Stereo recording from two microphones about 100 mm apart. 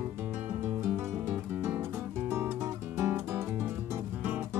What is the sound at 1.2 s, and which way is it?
Music, 20° right (ahead or behind).